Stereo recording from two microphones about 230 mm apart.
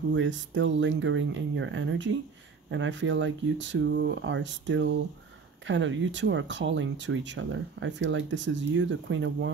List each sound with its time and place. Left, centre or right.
0.1 s speech: right